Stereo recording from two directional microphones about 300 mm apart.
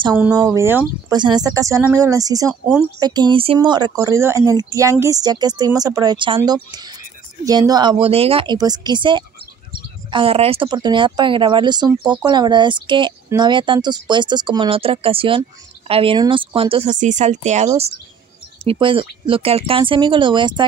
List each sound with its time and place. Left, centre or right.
0.0 s speech: centre